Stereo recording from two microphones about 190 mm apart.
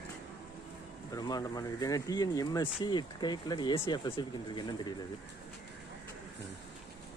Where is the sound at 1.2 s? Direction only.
20° left (ahead or behind).